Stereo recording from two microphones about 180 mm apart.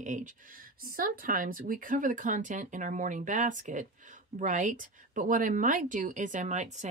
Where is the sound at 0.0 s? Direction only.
45° right (ahead or behind).